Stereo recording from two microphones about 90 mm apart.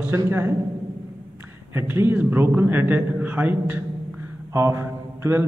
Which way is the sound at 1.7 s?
25° right (ahead or behind).